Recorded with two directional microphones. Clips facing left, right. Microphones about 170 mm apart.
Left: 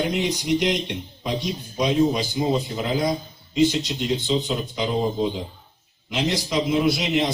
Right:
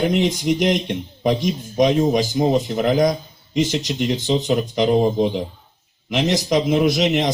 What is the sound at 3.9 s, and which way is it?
Speech, 45° right (ahead or behind).